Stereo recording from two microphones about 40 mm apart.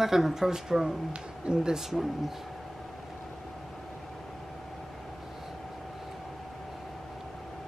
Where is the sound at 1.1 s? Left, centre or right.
Right.